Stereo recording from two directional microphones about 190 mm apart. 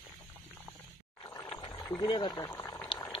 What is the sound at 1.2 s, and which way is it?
Roaring cats, 20° left (ahead or behind).